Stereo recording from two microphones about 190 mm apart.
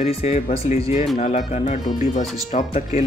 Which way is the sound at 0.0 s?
30° left (ahead or behind).